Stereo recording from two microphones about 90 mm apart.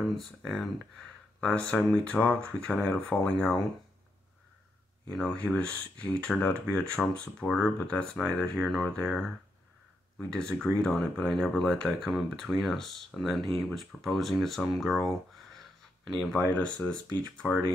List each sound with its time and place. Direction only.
0.0 s speech: centre (ahead or behind)
5.4 s speech: 15° left (ahead or behind)